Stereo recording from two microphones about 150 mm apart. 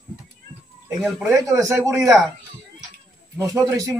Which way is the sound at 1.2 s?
20° right (ahead or behind).